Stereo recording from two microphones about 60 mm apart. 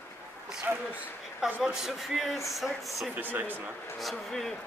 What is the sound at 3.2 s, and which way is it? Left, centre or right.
Speech, right.